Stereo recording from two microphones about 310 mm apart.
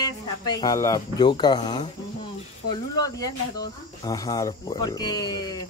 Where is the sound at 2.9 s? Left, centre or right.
Centre.